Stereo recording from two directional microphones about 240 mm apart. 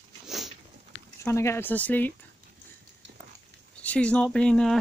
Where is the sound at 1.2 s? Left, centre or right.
Centre.